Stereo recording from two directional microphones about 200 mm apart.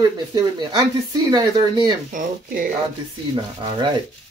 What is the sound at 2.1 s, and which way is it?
Speech, 45° right (ahead or behind).